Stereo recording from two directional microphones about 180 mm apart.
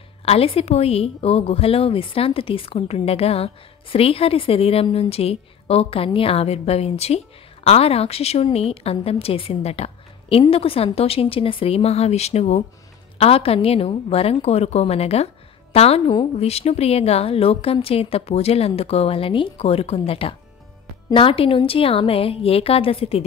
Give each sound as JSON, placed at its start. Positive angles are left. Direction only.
{"t": 0.2, "sound": "a woman's voice", "side_deg": 35}